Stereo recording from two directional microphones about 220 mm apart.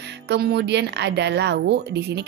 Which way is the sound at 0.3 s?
50° right (ahead or behind).